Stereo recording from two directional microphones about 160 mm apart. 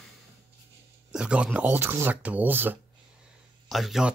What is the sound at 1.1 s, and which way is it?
Speech, 5° right (ahead or behind).